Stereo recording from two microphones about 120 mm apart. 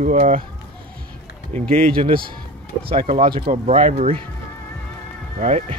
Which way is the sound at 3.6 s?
65° right (ahead or behind).